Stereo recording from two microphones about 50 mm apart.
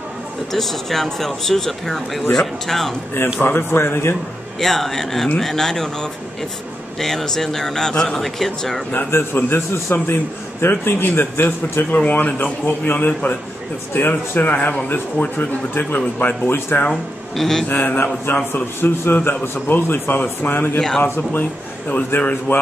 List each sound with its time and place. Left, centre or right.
0.5 s speech: centre
3.3 s speech: left
4.6 s a man's voice: centre
7.0 s a man's voice: centre
8.9 s speech: left
12.0 s speech: left
13.9 s speech: left
14.5 s speech: left
16.9 s speech: centre
17.6 s speech: left